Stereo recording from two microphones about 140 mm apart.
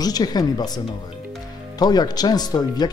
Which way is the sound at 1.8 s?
30° left (ahead or behind).